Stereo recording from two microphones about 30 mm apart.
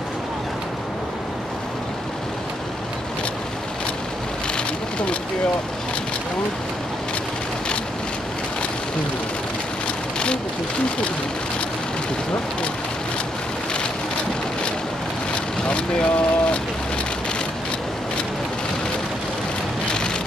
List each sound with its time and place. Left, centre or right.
15.9 s speech: left